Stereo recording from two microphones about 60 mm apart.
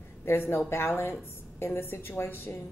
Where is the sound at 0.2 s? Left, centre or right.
Left.